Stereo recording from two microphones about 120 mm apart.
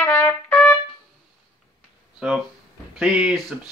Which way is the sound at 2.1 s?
5° right (ahead or behind).